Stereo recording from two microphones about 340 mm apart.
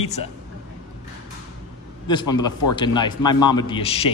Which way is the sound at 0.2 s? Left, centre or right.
Left.